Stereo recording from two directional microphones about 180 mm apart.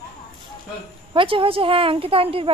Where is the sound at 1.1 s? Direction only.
30° right (ahead or behind).